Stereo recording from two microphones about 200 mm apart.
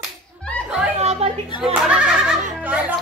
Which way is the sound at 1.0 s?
30° right (ahead or behind).